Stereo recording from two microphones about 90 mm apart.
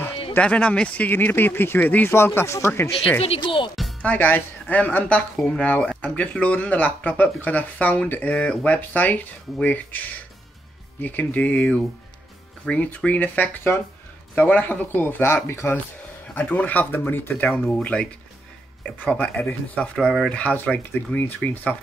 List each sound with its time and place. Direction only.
0.3 s speech: 15° left (ahead or behind); by 2.9 s 30° left (ahead or behind)
3.3 s speech: 70° left (ahead or behind)
4.0 s speech: 20° left (ahead or behind)
11.0 s speech: 20° left (ahead or behind)
16.3 s speech: 15° left (ahead or behind)
17.6 s speech: 5° left (ahead or behind)
18.9 s speech: 15° left (ahead or behind)